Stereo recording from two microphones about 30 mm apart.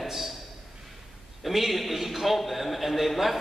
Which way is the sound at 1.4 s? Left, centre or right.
Centre.